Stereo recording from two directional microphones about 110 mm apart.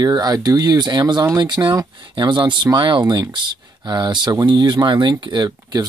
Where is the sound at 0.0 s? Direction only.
40° right (ahead or behind).